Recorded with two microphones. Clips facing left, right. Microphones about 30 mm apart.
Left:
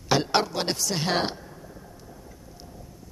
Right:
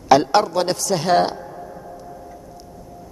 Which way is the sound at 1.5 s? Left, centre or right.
Right.